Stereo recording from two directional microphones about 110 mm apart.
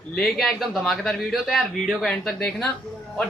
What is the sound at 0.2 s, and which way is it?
A man's voice, centre (ahead or behind).